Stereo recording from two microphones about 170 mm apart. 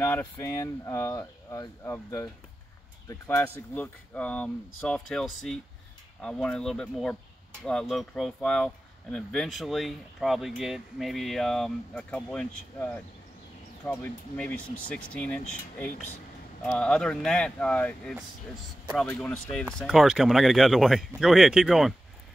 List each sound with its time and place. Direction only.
0.0 s speech: 15° left (ahead or behind); by 21.9 s centre (ahead or behind)